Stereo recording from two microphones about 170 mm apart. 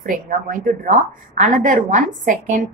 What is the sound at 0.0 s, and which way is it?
A woman's voice, 50° right (ahead or behind).